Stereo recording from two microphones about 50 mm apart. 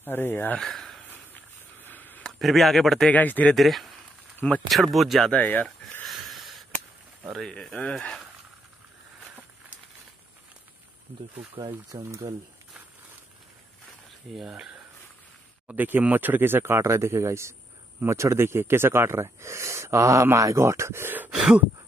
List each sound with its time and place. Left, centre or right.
0.0 s speech: left
0.6 s a sound: centre
1.3 s a sound: left
2.3 s speech: centre
3.1 s speech: left
3.5 s speech: centre
5.3 s speech: left
6.0 s a sound: centre
7.4 s speech: centre
14.3 s speech: centre
15.6 s speech: right
16.8 s speech: right
21.3 s a sound: centre